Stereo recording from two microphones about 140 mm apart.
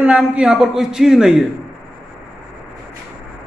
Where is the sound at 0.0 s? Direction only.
10° right (ahead or behind).